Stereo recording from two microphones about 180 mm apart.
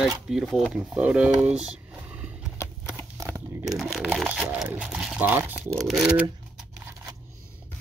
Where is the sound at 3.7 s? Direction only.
5° right (ahead or behind).